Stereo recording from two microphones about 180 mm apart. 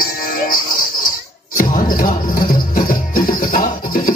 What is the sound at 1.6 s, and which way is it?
Music, 50° left (ahead or behind).